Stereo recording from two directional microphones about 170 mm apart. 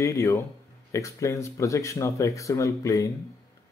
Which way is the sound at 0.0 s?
20° left (ahead or behind).